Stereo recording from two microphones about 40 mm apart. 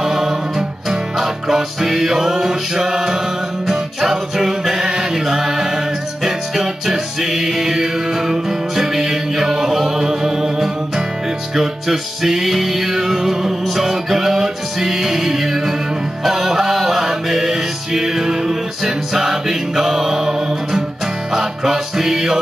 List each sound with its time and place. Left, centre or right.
0.0 s music: centre